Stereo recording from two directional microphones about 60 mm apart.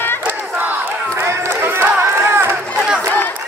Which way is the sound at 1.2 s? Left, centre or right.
Right.